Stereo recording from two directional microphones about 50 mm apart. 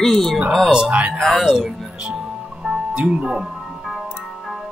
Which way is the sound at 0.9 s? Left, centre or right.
Right.